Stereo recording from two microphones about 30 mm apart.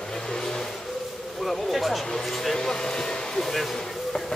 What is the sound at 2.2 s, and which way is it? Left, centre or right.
Speech, centre.